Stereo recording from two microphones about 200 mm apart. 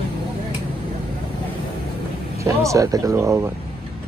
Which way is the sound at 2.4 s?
15° right (ahead or behind).